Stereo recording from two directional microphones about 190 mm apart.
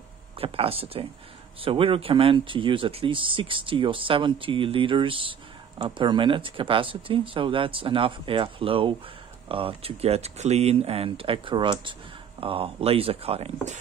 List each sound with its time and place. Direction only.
0.4 s speech: 30° right (ahead or behind)